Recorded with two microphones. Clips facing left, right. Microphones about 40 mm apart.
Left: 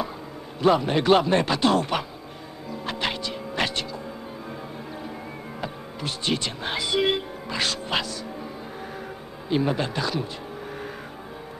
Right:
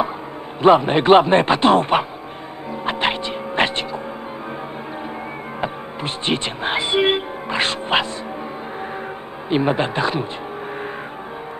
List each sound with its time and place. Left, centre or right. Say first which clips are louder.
0.6 s a man's voice: right 7 dB; right
2.7 s music: right 7 dB; right
5.6 s speech: right 7 dB; right
9.5 s a man's voice: right 5 dB; right